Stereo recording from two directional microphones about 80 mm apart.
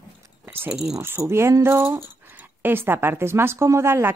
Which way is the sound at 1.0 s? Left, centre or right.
Right.